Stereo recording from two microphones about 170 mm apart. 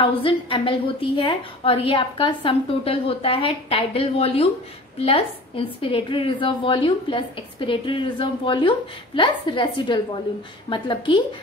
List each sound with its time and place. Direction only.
0.0 s a woman's voice: 30° left (ahead or behind)